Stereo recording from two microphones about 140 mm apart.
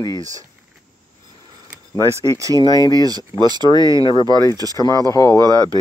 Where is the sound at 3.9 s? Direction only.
35° left (ahead or behind).